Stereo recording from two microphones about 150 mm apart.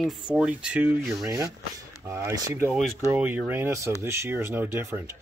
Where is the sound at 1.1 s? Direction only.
20° right (ahead or behind).